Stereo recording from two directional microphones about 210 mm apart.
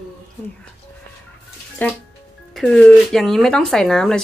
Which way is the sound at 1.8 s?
10° left (ahead or behind).